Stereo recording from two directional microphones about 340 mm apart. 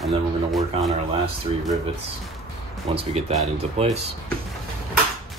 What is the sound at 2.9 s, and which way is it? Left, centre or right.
Speech, centre.